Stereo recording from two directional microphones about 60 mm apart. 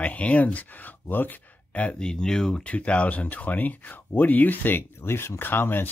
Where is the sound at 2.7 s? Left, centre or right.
Left.